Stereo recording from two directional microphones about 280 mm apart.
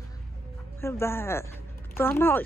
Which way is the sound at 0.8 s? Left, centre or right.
Centre.